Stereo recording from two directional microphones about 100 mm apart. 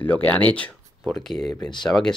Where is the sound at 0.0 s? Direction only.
15° left (ahead or behind).